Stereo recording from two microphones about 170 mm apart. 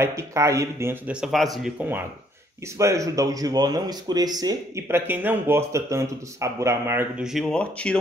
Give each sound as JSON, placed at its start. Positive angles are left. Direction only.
{"t": 0.0, "sound": "speech", "side_deg": -15}
{"t": 1.2, "sound": "speech", "side_deg": 0}